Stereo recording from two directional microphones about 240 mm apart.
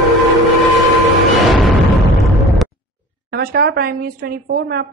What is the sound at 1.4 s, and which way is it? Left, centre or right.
Music, centre.